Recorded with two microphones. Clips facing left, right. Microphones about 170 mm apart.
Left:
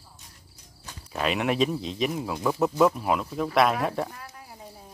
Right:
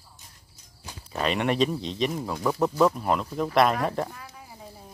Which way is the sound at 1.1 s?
Centre (ahead or behind).